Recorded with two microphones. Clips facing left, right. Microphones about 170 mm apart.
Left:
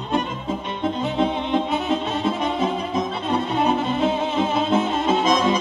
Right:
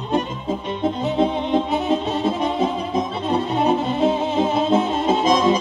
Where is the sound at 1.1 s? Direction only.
35° right (ahead or behind).